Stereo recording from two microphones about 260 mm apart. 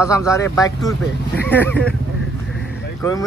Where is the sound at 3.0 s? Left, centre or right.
Centre.